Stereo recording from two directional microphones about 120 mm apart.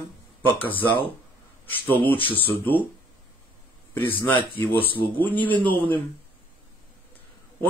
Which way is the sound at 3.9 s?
15° left (ahead or behind).